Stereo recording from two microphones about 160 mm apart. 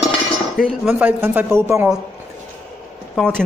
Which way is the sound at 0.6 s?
10° right (ahead or behind).